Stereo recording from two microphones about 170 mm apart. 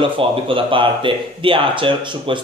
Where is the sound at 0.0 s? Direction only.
30° right (ahead or behind).